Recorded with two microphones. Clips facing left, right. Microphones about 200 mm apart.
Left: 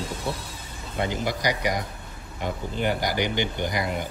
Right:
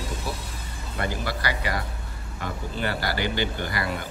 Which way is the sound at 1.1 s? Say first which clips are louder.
Left 3 dB; 15° left (ahead or behind).